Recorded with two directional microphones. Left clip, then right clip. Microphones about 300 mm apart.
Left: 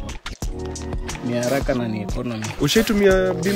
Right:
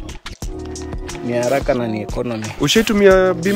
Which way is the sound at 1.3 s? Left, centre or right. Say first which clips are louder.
Right 5 dB; centre.